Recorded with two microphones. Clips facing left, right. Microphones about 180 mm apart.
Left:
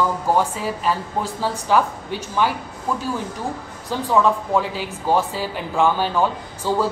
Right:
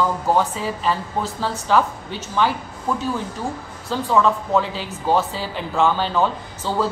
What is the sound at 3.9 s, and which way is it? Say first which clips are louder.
A woman's voice: even; 15° left (ahead or behind).